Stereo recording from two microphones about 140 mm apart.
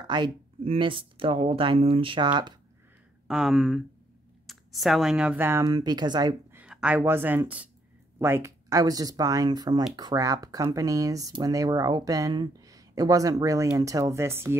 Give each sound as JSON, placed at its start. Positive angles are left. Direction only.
{"t": 0.0, "sound": "speech", "side_deg": -35}
{"t": 3.3, "sound": "speech", "side_deg": -5}
{"t": 5.6, "sound": "speech", "side_deg": -25}
{"t": 6.5, "sound": "a sound", "side_deg": -10}
{"t": 7.0, "sound": "speech", "side_deg": -15}